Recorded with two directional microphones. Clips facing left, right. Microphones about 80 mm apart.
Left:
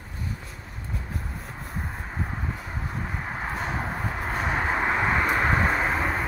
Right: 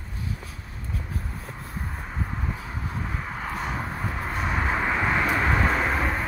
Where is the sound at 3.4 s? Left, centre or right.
Left; by 6.2 s centre.